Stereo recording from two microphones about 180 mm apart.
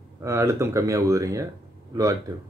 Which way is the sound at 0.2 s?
15° right (ahead or behind).